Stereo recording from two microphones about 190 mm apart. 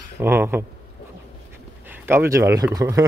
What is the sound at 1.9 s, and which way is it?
Speech, 10° right (ahead or behind).